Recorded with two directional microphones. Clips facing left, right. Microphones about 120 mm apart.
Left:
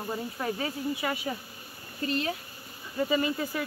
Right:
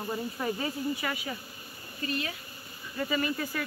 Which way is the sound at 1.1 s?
30° left (ahead or behind).